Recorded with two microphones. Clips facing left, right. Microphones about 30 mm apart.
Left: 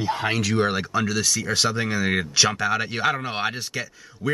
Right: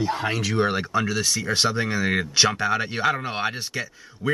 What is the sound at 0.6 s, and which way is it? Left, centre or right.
Speech, centre.